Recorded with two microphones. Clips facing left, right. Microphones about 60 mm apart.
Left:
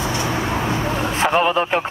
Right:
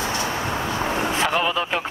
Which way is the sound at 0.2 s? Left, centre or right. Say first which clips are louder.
Left 3 dB; left.